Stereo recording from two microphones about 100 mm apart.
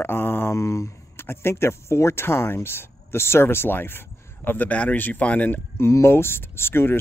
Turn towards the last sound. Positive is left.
turn(degrees=25)  # may be behind; listen again after turning